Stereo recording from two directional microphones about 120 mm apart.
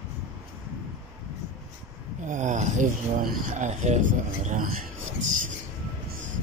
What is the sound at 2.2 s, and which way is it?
Speech, 90° right.